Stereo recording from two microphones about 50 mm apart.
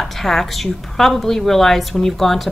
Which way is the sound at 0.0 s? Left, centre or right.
Centre.